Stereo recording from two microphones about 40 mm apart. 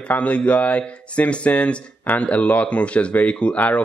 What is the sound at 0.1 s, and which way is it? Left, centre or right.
Speech, left.